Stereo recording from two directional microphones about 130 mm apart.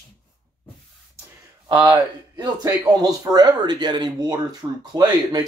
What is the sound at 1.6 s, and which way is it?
Speech, 35° right (ahead or behind).